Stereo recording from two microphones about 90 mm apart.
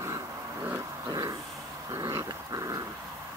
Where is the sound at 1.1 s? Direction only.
45° right (ahead or behind).